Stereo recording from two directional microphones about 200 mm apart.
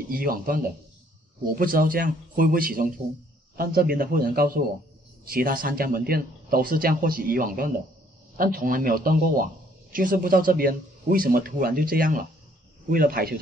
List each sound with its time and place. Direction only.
0.1 s speech: 45° right (ahead or behind)